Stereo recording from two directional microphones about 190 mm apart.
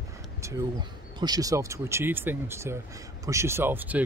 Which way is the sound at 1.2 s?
20° right (ahead or behind).